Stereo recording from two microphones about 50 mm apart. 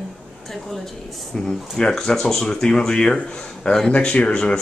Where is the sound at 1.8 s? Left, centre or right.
Centre.